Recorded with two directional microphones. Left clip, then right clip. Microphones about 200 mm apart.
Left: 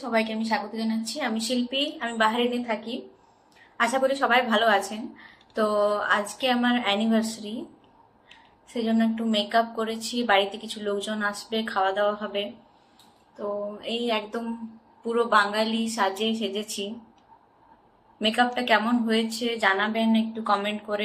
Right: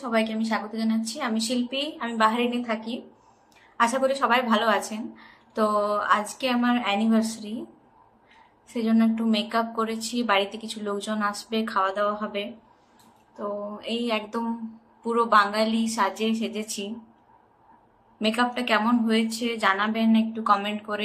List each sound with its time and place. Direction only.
0.0 s a woman's voice: 10° right (ahead or behind)
8.7 s a woman's voice: 10° right (ahead or behind)
18.2 s a woman's voice: 10° right (ahead or behind)